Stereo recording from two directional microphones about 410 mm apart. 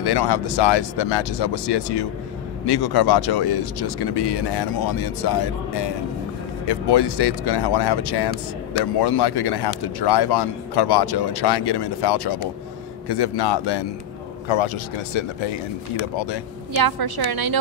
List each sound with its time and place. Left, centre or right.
0.0 s a man's voice: left
6.7 s a man's voice: left
14.5 s speech: left
16.7 s a woman's voice: right